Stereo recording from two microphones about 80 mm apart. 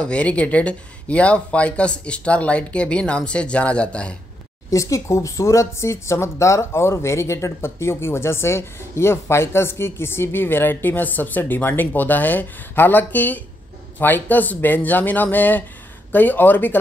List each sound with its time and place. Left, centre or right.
0.0 s speech: centre
4.6 s a man's voice: left